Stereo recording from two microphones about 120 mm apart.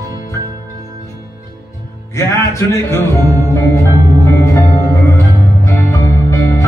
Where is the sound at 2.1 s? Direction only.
20° left (ahead or behind).